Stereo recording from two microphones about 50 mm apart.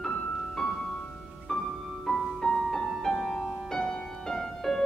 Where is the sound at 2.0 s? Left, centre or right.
Centre.